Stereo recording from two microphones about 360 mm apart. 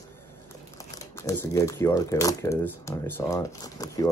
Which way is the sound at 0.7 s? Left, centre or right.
Centre.